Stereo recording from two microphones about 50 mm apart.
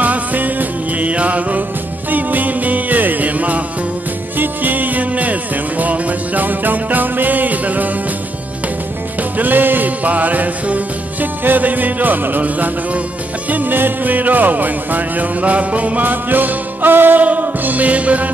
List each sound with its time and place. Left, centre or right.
0.0 s music: right
9.4 s music: right